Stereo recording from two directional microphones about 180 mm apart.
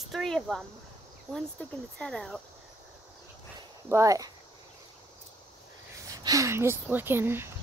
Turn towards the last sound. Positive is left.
turn(degrees=-10)  # may be behind; listen again after turning